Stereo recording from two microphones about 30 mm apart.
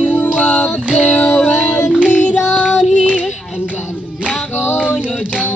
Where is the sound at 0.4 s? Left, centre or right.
Left.